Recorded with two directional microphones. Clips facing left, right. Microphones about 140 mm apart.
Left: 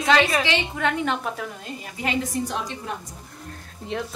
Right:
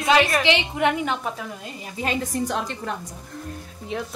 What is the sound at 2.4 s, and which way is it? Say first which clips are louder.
Speech: right 3 dB; 60° right (ahead or behind).